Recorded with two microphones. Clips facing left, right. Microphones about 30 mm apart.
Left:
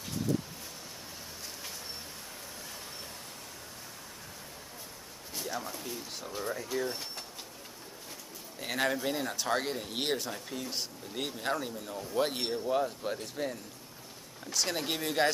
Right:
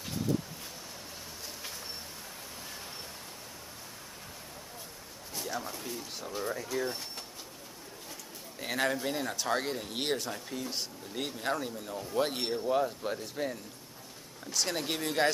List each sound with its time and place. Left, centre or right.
5.3 s speech: centre
8.5 s speech: centre